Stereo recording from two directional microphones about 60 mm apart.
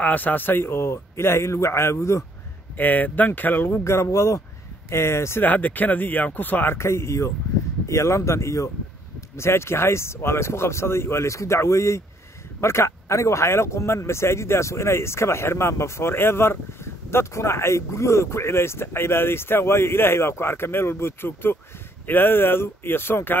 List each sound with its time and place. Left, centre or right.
0.0 s a man's voice: left
2.8 s speech: left
3.8 s a man's voice: left
5.4 s speech: left
6.8 s a man's voice: left